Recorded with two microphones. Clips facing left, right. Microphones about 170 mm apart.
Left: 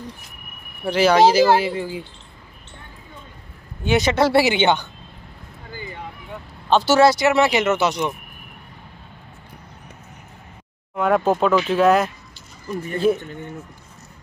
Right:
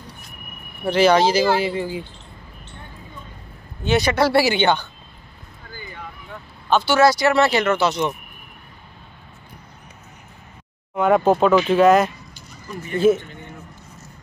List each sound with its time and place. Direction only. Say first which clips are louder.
0.8 s speech: left 1 dB; 10° left (ahead or behind)
3.8 s speech: even; 20° left (ahead or behind)
6.7 s speech: left 1 dB; 35° left (ahead or behind)
7.1 s speech: even; 20° left (ahead or behind)
11.0 s speech: right 2 dB; centre (ahead or behind)